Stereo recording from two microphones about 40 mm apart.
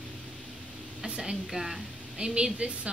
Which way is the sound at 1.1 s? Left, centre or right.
Right.